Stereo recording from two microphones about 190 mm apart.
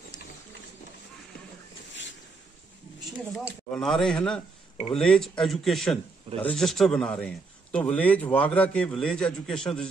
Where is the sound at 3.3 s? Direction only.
5° left (ahead or behind).